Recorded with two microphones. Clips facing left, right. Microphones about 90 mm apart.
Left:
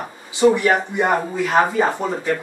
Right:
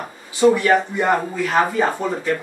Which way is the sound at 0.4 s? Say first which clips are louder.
Right 1 dB; 15° left (ahead or behind).